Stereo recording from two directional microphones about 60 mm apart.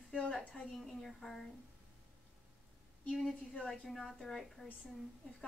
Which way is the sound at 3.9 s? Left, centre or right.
Centre.